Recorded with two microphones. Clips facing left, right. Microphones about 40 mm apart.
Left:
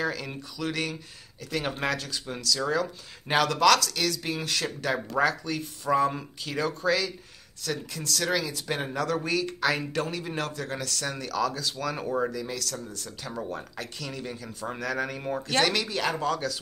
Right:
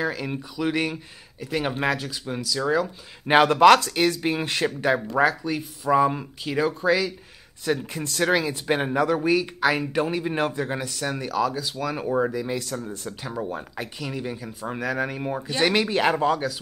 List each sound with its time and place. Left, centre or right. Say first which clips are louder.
0.0 s speech: right 3 dB; centre
3.3 s speech: right 7 dB; right; by 7.2 s centre
7.6 s speech: right 6 dB; right
13.3 s speech: right 3 dB; centre
15.6 s speech: right 9 dB; right